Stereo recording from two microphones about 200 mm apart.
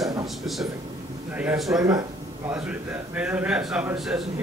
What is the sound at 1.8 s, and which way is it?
Speech, 15° right (ahead or behind).